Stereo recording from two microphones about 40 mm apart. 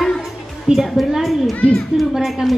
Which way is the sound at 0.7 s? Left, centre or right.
Centre.